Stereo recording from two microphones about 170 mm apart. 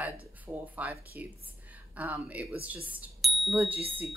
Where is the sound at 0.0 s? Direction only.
10° right (ahead or behind).